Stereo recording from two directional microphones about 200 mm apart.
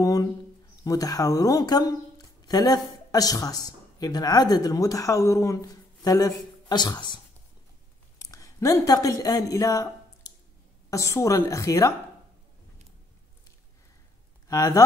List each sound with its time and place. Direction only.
0.0 s speech: 20° left (ahead or behind)
8.3 s speech: 15° left (ahead or behind)
14.5 s speech: 15° left (ahead or behind)